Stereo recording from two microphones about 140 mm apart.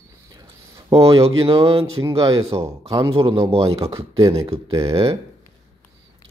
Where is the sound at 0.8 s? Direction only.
40° right (ahead or behind).